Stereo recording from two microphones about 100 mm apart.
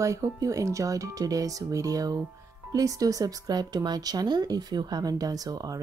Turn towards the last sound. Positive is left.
turn(degrees=-40)  # may be behind; listen again after turning